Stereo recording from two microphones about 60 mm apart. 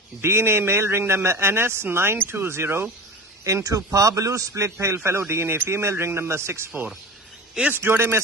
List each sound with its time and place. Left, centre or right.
0.2 s a man's voice: right
3.4 s a man's voice: right
7.7 s a man's voice: right